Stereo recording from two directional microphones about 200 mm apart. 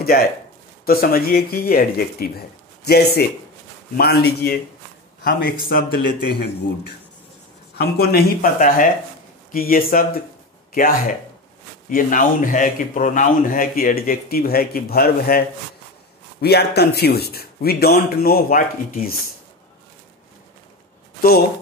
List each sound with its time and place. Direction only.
0.8 s a man's voice: 50° left (ahead or behind)
7.7 s a man's voice: 50° left (ahead or behind)